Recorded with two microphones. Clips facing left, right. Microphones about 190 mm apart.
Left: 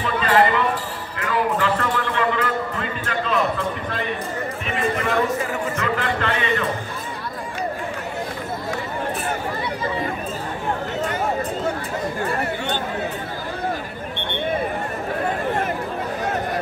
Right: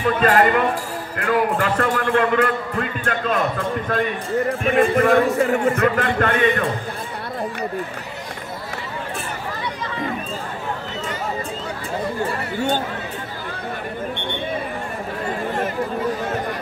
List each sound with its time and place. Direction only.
0.0 s a man's voice: 45° right (ahead or behind)
1.2 s a sound: 50° right (ahead or behind)
4.5 s a man's voice: 55° right (ahead or behind)